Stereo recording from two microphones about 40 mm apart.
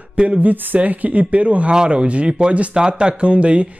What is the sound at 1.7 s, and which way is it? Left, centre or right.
Speech, right.